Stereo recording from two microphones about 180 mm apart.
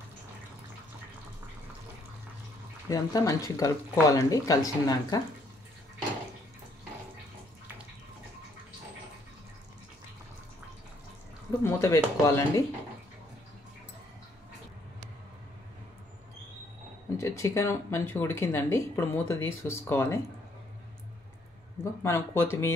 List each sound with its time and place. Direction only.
2.9 s speech: 20° left (ahead or behind)
11.6 s speech: 15° left (ahead or behind)
17.2 s speech: 15° left (ahead or behind)
22.0 s speech: 15° left (ahead or behind)